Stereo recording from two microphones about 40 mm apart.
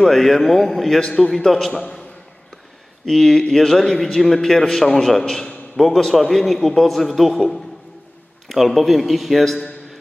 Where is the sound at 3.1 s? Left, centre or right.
Centre.